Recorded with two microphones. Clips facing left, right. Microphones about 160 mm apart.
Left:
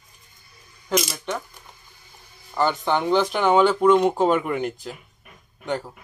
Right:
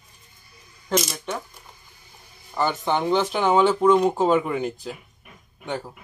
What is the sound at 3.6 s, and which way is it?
Speech, centre (ahead or behind).